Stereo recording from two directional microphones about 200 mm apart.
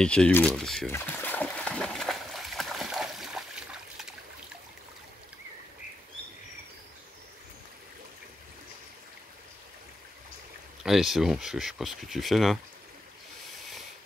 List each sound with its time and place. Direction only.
0.0 s speech: 5° left (ahead or behind)
0.9 s splash: 10° left (ahead or behind)
10.8 s speech: centre (ahead or behind)